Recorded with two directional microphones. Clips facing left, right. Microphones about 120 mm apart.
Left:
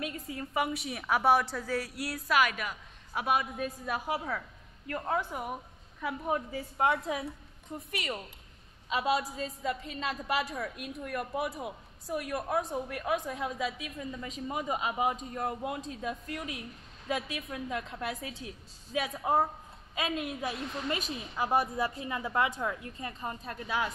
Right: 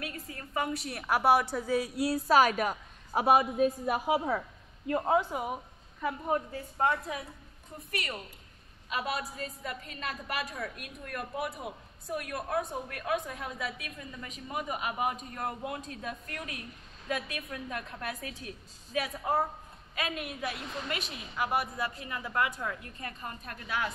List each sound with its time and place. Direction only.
0.0 s a woman's voice: 15° left (ahead or behind); by 3.6 s 35° right (ahead or behind)
3.8 s a woman's voice: 15° right (ahead or behind)
5.3 s a woman's voice: 5° right (ahead or behind)
6.2 s a woman's voice: 5° left (ahead or behind)
8.8 s a woman's voice: 20° left (ahead or behind)
21.5 s a woman's voice: 20° left (ahead or behind)